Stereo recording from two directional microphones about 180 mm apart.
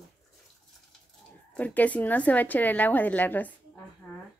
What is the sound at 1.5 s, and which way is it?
Speech, 10° left (ahead or behind).